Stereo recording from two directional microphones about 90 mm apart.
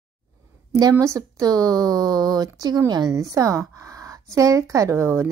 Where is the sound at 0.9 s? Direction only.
35° right (ahead or behind).